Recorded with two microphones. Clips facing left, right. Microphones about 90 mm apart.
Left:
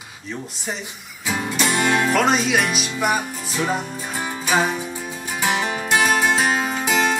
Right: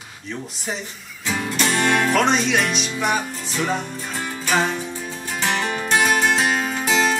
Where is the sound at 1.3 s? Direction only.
10° left (ahead or behind).